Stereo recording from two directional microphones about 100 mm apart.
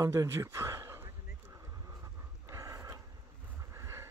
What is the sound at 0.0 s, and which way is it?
Speech, 30° right (ahead or behind).